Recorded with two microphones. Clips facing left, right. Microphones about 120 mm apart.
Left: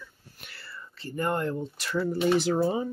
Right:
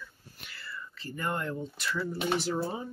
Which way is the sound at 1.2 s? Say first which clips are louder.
Left 5 dB; 45° left (ahead or behind).